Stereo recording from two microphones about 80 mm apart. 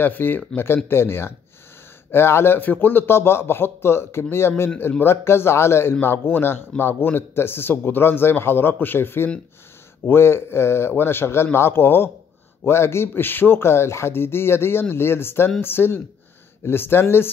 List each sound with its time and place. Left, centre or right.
0.0 s a man's voice: left